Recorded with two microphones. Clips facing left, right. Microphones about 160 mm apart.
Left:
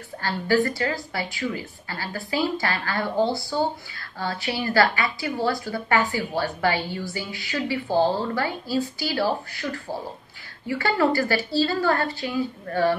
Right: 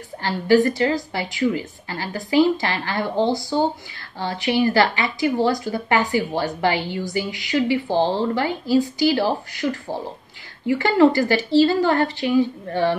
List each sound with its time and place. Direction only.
0.2 s a woman's voice: 20° right (ahead or behind)
10.7 s a woman's voice: 20° right (ahead or behind)